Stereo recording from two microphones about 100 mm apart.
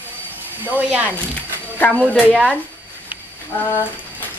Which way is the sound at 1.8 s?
10° left (ahead or behind).